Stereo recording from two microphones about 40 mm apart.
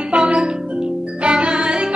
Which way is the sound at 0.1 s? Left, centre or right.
Right.